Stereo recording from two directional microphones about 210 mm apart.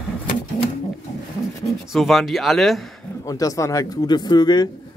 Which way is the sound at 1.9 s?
Centre (ahead or behind).